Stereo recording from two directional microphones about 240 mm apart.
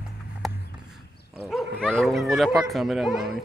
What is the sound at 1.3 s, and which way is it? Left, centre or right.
Dog, centre.